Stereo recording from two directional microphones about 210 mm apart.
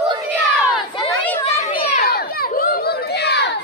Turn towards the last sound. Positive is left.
turn(degrees=55)  # may be behind; listen again after turning